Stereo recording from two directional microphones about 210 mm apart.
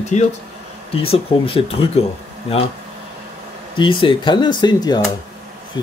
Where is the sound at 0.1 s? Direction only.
35° left (ahead or behind).